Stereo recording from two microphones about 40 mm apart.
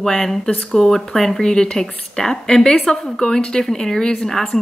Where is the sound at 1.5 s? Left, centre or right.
Centre.